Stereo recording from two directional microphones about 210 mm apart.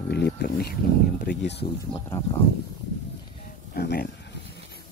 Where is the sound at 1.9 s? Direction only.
15° left (ahead or behind).